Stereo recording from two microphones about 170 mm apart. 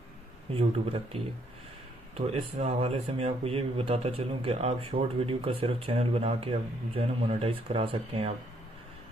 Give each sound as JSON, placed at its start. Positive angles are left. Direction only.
{"t": 0.5, "sound": "speech", "side_deg": -35}